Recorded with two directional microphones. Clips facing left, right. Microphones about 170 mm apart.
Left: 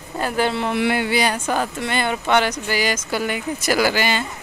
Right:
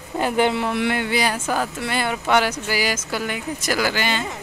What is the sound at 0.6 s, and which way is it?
Speech, 5° left (ahead or behind).